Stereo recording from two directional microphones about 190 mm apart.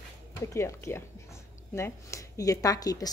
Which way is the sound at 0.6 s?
15° left (ahead or behind).